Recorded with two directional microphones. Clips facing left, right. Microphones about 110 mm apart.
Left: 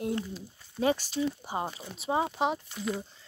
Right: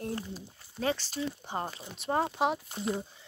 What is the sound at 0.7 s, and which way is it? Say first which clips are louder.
Speech: left 4 dB; 15° left (ahead or behind).